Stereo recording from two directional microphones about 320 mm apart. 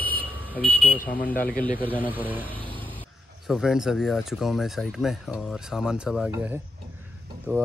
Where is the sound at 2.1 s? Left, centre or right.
Centre.